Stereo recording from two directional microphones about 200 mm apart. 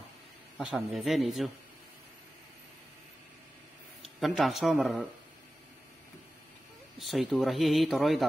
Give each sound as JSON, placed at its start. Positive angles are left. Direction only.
{"t": 0.7, "sound": "speech", "side_deg": 0}
{"t": 4.0, "sound": "speech", "side_deg": 0}
{"t": 7.0, "sound": "speech", "side_deg": 0}